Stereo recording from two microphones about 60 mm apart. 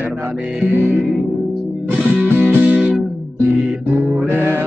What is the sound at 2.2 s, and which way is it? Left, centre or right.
Music, right.